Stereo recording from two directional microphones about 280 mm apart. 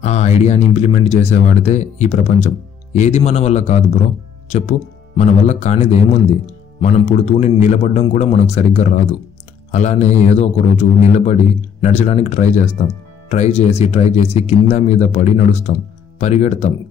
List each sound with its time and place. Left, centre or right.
0.0 s speech: left